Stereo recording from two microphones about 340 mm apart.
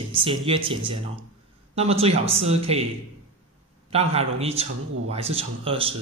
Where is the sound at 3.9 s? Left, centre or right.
Centre.